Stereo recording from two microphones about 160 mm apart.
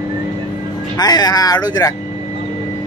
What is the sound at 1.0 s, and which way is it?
Speech, 25° left (ahead or behind).